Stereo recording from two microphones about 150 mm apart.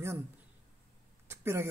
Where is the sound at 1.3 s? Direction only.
15° right (ahead or behind).